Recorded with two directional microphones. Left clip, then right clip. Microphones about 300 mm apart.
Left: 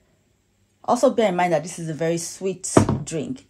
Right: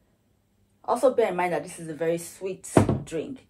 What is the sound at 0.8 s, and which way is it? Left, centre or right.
A woman's voice, left.